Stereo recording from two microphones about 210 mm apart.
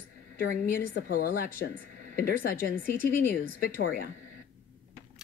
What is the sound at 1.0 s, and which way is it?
Speech, 45° left (ahead or behind).